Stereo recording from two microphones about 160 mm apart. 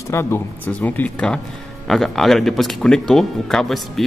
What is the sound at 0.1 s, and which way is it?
Speech, 15° left (ahead or behind).